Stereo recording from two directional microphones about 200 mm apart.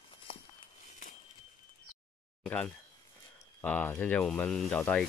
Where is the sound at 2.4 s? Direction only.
5° left (ahead or behind).